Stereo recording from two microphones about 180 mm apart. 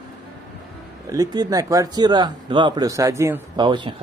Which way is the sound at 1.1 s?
20° right (ahead or behind).